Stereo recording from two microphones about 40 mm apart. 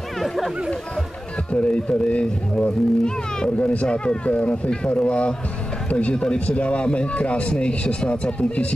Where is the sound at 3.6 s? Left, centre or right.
Left.